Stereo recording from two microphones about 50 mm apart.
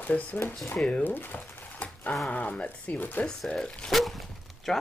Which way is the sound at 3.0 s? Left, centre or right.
Left.